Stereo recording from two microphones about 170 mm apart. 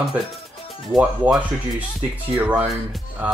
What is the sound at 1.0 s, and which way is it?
Speech, 5° right (ahead or behind).